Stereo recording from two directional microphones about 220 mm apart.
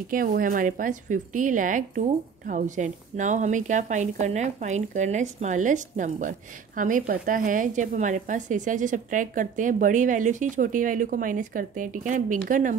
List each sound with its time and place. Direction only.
0.1 s a woman's voice: 40° right (ahead or behind)